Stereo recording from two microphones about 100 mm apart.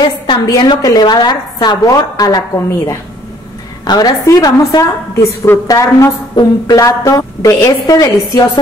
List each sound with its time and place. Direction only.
0.5 s a woman's voice: 40° left (ahead or behind)